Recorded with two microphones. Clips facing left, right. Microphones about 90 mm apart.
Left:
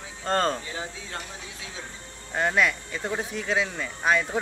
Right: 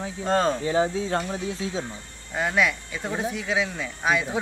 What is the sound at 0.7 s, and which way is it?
Speech, 30° right (ahead or behind).